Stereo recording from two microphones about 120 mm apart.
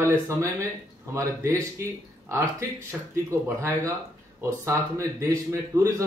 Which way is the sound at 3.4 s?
25° right (ahead or behind).